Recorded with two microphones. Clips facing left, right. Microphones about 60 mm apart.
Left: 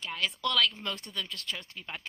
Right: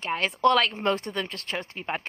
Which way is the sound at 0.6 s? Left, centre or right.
Right.